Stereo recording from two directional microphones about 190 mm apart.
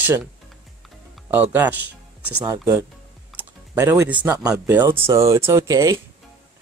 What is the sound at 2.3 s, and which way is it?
Speech, 10° right (ahead or behind).